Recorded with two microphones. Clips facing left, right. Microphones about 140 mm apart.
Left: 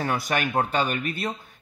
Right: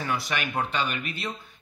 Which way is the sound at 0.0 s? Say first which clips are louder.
Left 4 dB; 45° left (ahead or behind).